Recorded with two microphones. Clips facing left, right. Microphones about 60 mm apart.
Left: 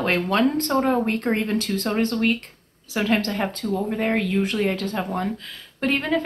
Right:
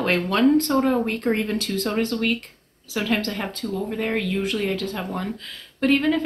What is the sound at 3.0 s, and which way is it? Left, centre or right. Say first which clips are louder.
Speech: left 2 dB; centre.